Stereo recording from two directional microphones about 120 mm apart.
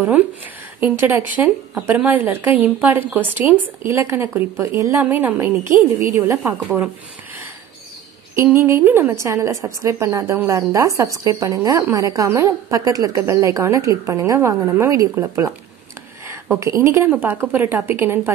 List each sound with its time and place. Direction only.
0.7 s a woman's voice: 15° right (ahead or behind)
8.4 s a woman's voice: 20° right (ahead or behind)